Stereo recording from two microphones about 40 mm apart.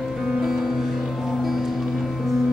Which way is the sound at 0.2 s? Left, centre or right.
Centre.